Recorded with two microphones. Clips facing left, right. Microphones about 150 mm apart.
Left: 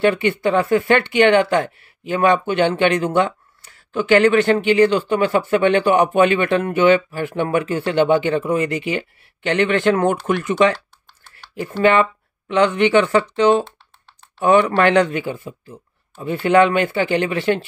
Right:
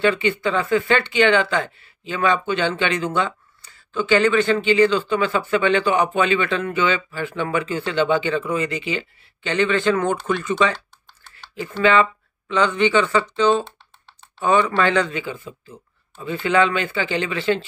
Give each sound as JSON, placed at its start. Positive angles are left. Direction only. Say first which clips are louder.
{"t": 0.0, "sound": "speech", "louder": "left 3 dB", "side_deg": 60}
{"t": 11.8, "sound": "speech", "louder": "left 2 dB", "side_deg": 55}